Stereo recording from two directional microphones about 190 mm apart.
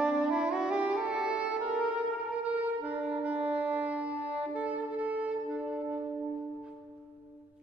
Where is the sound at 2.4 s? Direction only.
10° right (ahead or behind).